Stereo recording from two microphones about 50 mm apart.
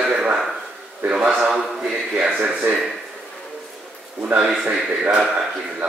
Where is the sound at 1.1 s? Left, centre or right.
Centre.